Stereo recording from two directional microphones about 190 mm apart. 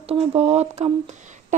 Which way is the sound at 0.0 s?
30° right (ahead or behind).